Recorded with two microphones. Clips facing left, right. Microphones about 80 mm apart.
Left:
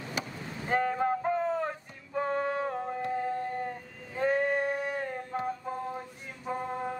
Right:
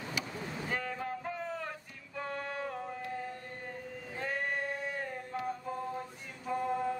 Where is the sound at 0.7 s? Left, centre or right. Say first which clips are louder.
Left 11 dB; left.